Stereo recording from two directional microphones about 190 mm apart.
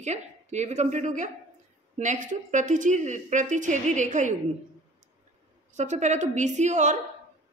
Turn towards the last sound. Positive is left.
turn(degrees=-40)  # may be behind; listen again after turning